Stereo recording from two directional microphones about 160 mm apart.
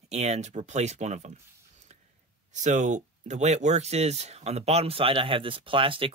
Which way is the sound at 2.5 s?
50° right (ahead or behind).